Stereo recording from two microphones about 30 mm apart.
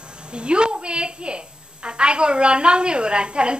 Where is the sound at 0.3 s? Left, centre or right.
Right.